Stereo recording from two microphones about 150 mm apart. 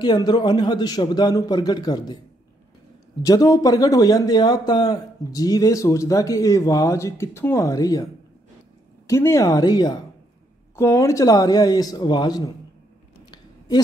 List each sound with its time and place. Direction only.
0.0 s speech: 30° left (ahead or behind)
3.2 s speech: 25° left (ahead or behind)
13.2 s a sound: 30° left (ahead or behind)